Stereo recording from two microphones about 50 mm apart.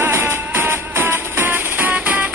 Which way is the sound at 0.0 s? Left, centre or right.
Right.